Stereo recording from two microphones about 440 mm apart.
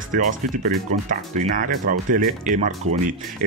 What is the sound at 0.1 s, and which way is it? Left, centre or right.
Speech, centre.